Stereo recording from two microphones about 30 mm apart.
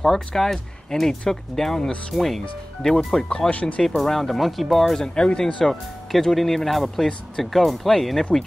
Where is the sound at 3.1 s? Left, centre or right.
Centre.